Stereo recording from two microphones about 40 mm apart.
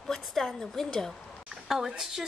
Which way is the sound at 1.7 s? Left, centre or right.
Centre.